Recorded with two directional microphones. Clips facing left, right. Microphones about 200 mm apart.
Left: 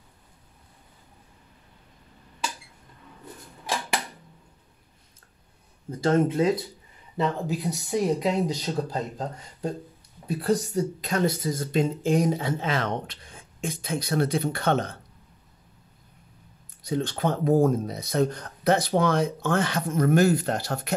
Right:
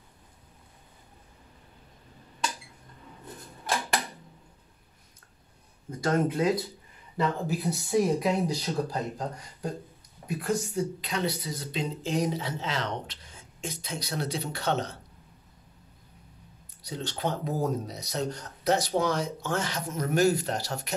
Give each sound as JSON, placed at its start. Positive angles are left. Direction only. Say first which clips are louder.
{"t": 5.9, "sound": "speech", "louder": "left 4 dB", "side_deg": 30}
{"t": 10.2, "sound": "speech", "louder": "left 5 dB", "side_deg": 35}
{"t": 16.8, "sound": "speech", "louder": "left 6 dB", "side_deg": 55}